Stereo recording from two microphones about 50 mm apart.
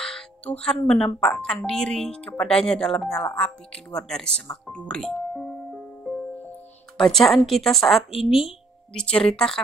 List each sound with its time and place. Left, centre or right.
0.8 s speech: centre
5.0 s music: centre
7.0 s a woman's voice: centre
8.9 s speech: centre